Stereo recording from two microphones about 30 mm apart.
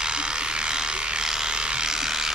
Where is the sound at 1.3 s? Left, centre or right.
Right.